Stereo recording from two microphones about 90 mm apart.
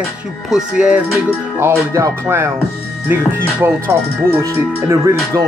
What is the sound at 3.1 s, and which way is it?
Speech, 25° right (ahead or behind).